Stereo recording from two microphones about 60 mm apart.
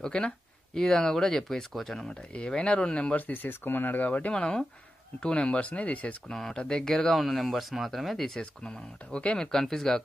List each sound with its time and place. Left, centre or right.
0.0 s speech: centre
3.2 s speech: left
6.3 s speech: centre
8.4 s speech: centre